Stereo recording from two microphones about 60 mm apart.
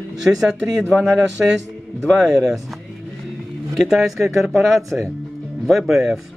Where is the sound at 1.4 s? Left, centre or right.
Centre.